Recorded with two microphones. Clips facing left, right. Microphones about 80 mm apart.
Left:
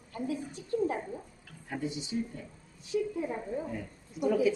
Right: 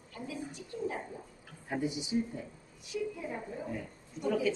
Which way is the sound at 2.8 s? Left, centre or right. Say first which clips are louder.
Left 5 dB; left.